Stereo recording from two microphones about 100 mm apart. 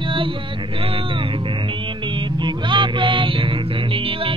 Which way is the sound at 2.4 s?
55° right (ahead or behind).